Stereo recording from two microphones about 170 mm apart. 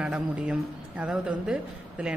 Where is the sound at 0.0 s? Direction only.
5° right (ahead or behind).